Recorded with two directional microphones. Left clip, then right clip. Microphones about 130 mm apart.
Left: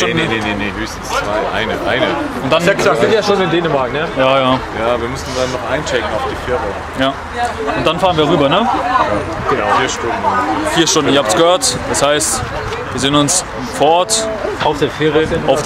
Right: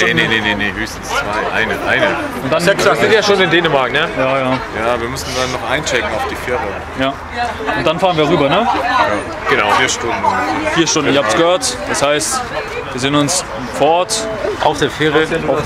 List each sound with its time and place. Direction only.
0.0 s speech: 20° right (ahead or behind)
1.5 s speech: 5° right (ahead or behind); by 4.1 s 25° right (ahead or behind)
4.2 s speech: 25° left (ahead or behind)
5.7 s speech: 20° right (ahead or behind)
7.8 s speech: 5° left (ahead or behind)
9.5 s speech: 25° right (ahead or behind)
10.7 s speech: 15° left (ahead or behind)
14.7 s speech: 30° right (ahead or behind)